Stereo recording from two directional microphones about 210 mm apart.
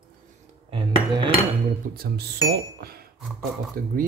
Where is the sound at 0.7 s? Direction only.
25° right (ahead or behind).